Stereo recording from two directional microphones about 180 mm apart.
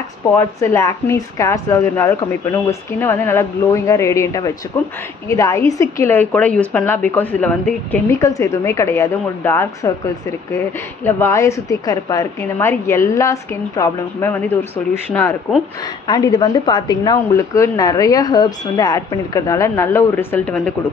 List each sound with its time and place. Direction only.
0.4 s a woman's voice: 15° left (ahead or behind)
16.1 s a woman's voice: 25° left (ahead or behind); by 20.7 s 5° left (ahead or behind)